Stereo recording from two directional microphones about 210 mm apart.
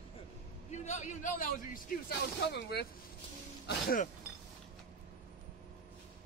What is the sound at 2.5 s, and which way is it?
Speech, 50° left (ahead or behind).